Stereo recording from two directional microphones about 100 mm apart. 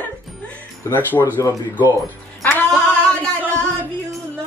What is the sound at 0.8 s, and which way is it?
Speech, 20° left (ahead or behind).